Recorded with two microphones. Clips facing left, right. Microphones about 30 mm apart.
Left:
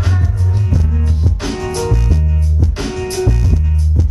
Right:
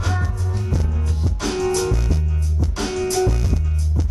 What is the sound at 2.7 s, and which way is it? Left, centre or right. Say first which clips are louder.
Music: right 1 dB; left.